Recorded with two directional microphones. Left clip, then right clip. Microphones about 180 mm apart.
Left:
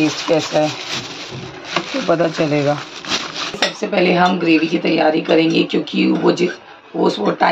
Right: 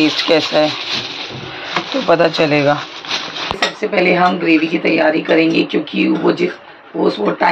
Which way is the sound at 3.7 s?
20° left (ahead or behind).